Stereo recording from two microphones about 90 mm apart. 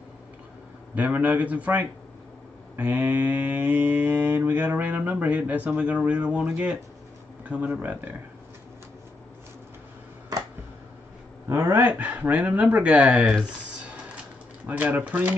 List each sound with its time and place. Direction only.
0.9 s speech: 15° right (ahead or behind)
2.7 s mantra: 20° right (ahead or behind)
7.4 s speech: 15° right (ahead or behind)
11.4 s speech: 30° right (ahead or behind)
11.8 s speech: 15° right (ahead or behind)
14.7 s speech: 15° right (ahead or behind)